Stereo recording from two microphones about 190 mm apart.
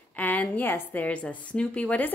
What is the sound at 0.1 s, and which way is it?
A woman's voice, 10° left (ahead or behind).